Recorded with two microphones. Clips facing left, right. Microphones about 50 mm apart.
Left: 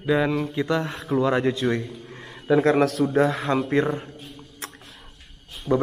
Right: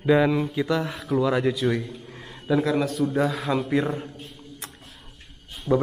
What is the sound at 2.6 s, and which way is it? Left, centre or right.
Speech, left.